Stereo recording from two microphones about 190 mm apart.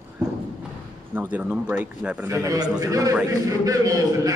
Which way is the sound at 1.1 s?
10° right (ahead or behind).